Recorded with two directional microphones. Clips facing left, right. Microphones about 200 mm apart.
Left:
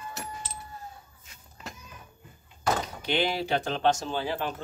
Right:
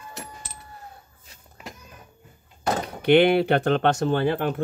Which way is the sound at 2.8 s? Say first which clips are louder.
Right 11 dB; 60° right (ahead or behind).